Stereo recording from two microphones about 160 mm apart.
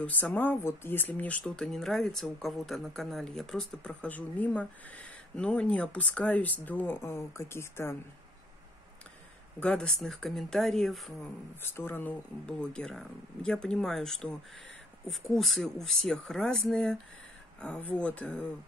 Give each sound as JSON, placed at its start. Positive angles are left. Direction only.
{"t": 0.0, "sound": "speech", "side_deg": 10}
{"t": 9.6, "sound": "speech", "side_deg": 5}
{"t": 11.6, "sound": "speech", "side_deg": 15}